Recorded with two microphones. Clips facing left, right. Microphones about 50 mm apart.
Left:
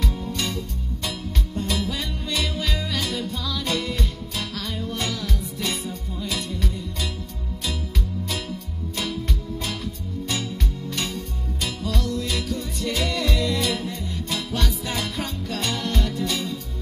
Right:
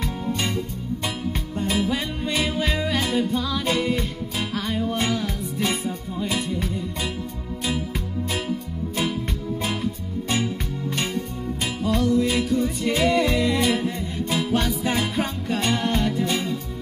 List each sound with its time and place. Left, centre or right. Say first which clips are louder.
0.0 s music: right 2 dB; right
8.3 s music: right 4 dB; right
11.0 s music: right 2 dB; right